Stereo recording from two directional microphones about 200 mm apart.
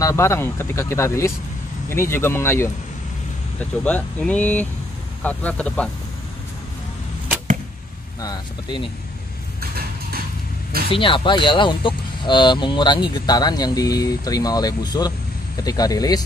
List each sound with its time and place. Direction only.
0.0 s speech: 15° left (ahead or behind)
8.2 s speech: 20° left (ahead or behind)
9.6 s a sound: 50° right (ahead or behind)
10.9 s speech: 25° left (ahead or behind)